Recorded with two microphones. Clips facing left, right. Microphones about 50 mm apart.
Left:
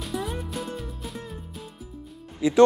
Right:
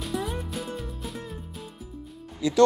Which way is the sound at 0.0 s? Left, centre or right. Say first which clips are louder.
Even; centre.